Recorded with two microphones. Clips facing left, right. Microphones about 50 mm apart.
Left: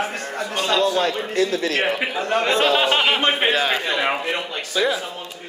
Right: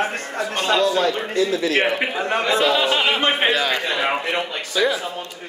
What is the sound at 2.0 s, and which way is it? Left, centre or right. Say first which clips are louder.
Speech: even; centre.